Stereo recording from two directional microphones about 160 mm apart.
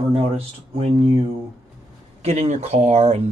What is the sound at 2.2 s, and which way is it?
Speech, 45° right (ahead or behind).